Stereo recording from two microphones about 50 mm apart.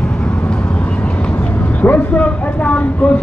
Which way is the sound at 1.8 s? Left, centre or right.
Left.